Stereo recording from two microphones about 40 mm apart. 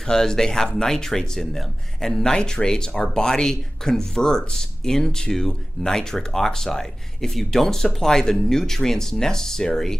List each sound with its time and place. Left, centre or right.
0.0 s speech: centre